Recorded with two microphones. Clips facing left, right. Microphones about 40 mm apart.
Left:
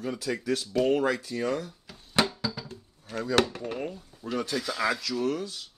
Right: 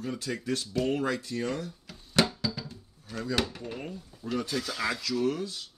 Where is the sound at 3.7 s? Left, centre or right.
Centre.